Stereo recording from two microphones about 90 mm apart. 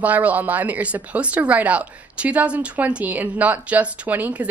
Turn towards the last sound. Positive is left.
turn(degrees=-15)  # may be behind; listen again after turning